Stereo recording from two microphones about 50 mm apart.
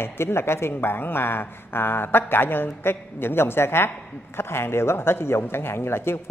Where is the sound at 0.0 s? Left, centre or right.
Left.